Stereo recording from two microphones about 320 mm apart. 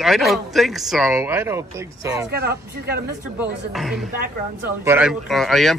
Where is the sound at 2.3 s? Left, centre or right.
Right.